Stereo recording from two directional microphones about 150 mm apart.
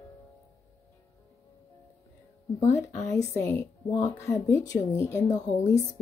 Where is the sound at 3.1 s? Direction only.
20° left (ahead or behind).